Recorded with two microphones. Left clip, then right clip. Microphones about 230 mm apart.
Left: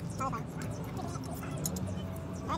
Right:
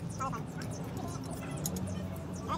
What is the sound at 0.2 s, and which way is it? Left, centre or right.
Speech, centre.